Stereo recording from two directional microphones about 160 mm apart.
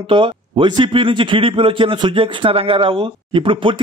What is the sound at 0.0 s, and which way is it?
A man's voice, 30° right (ahead or behind).